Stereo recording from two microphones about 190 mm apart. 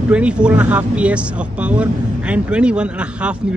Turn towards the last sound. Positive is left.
turn(degrees=-5)  # may be behind; listen again after turning